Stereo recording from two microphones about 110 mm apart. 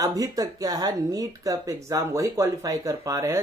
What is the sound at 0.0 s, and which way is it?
Speech, 30° right (ahead or behind).